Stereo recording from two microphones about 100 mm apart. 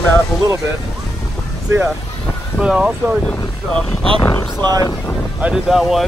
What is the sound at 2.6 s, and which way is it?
Speech, 10° right (ahead or behind).